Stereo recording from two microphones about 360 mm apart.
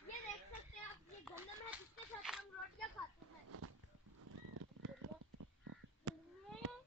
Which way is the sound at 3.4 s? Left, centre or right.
Right.